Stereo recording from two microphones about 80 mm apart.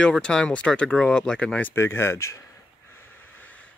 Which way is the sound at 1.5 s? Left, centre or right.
Left.